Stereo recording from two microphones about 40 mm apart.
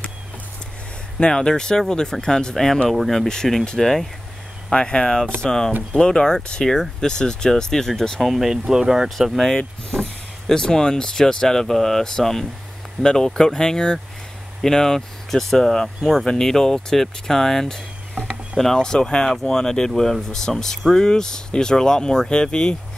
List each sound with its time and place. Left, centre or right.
1.2 s speech: centre
4.7 s speech: left
8.2 s speech: centre
10.5 s speech: centre